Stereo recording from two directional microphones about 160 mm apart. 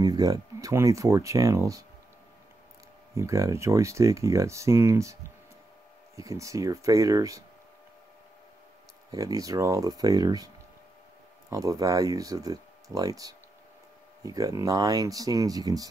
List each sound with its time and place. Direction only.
0.0 s speech: 25° right (ahead or behind)
3.2 s speech: 20° right (ahead or behind)
6.1 s speech: 20° right (ahead or behind)
9.1 s speech: 20° right (ahead or behind)
11.5 s speech: 20° right (ahead or behind)